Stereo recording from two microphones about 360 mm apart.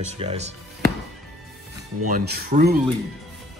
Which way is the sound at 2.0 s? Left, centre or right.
Right.